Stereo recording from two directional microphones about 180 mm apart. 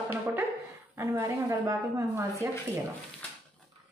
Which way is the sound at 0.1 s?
15° right (ahead or behind).